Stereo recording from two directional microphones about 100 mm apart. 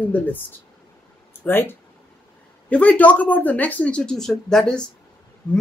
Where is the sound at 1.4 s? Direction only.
20° left (ahead or behind).